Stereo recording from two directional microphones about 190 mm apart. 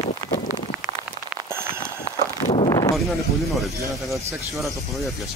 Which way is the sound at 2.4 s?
30° left (ahead or behind).